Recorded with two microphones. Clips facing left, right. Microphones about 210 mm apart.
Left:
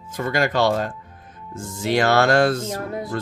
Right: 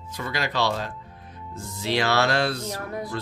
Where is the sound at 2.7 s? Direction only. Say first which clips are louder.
Left 4 dB; 25° left (ahead or behind).